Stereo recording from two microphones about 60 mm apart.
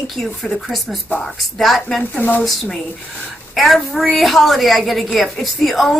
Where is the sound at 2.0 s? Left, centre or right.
Left.